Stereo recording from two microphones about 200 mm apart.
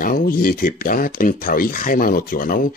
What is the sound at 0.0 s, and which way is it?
Speech, 45° left (ahead or behind).